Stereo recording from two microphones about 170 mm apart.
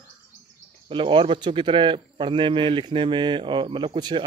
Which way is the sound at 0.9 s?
30° right (ahead or behind).